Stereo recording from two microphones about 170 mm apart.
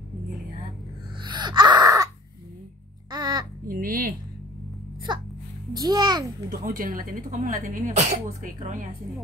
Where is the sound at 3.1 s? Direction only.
25° right (ahead or behind).